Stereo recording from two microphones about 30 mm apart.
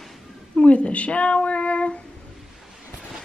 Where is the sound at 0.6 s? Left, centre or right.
Left.